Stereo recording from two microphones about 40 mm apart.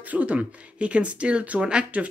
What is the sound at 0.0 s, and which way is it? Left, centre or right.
Speech, right.